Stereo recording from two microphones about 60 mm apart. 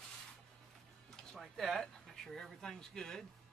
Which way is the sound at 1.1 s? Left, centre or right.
Centre.